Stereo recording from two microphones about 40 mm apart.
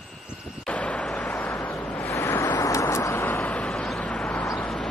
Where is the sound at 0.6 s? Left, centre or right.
Left.